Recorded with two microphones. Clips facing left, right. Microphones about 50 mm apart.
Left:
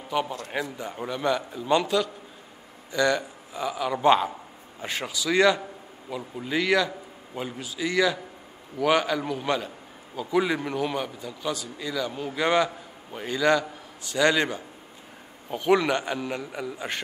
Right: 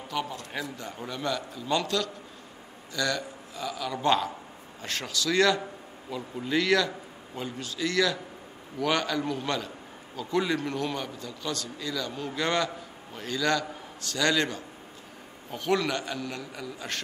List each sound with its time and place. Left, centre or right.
0.1 s a man's voice: left